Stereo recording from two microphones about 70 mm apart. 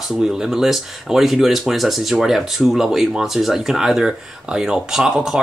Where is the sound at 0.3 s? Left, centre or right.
Centre.